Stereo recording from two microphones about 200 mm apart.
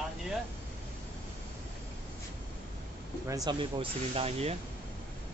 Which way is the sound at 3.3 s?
20° right (ahead or behind).